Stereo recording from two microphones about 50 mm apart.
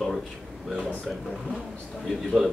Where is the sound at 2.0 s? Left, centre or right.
Centre.